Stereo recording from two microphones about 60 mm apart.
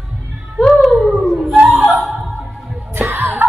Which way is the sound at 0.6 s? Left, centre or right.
Centre.